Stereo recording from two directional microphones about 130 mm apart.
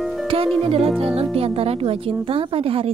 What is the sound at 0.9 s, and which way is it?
Speech, 50° right (ahead or behind).